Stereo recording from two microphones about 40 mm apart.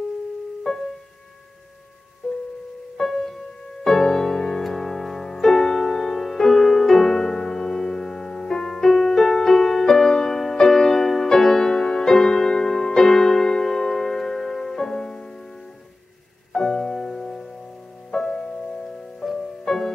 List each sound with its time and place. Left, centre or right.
0.7 s music: centre
2.2 s music: centre
3.0 s music: centre
16.5 s music: centre